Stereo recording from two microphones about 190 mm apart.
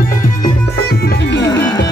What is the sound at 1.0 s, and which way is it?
Music, 60° left (ahead or behind).